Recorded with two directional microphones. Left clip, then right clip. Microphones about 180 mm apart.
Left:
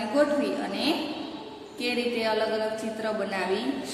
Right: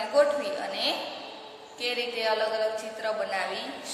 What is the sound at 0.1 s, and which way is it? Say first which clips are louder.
A woman's voice: right 1 dB; 15° right (ahead or behind).